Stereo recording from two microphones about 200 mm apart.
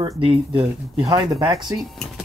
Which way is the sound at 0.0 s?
25° right (ahead or behind).